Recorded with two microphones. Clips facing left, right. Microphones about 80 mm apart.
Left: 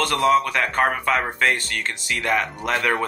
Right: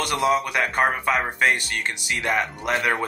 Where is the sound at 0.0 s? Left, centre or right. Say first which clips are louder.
Left 3 dB; centre.